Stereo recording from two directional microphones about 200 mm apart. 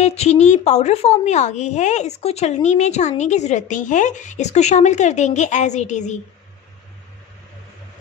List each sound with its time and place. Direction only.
0.0 s a woman's voice: 35° left (ahead or behind)